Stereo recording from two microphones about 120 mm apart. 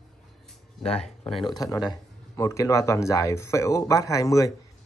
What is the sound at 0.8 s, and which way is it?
Speech, 60° left (ahead or behind).